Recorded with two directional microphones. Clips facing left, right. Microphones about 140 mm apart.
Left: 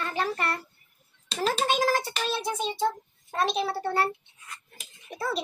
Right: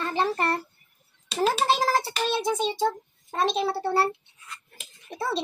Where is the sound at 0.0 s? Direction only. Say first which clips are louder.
Right 3 dB; 25° right (ahead or behind).